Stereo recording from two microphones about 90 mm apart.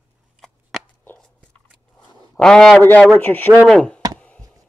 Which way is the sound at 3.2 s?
20° left (ahead or behind).